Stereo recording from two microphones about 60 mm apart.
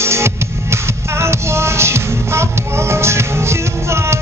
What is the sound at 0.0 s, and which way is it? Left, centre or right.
Music, right.